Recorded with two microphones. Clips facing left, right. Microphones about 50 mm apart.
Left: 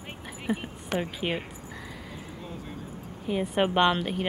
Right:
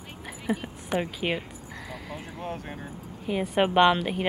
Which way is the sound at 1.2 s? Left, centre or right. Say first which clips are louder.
Right 1 dB; right.